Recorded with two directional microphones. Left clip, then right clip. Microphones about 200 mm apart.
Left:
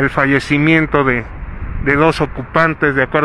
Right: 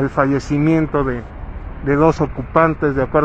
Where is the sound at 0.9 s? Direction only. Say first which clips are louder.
Left 6 dB; 20° left (ahead or behind).